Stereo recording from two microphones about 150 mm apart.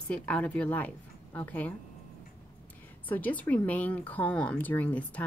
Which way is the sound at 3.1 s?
10° left (ahead or behind).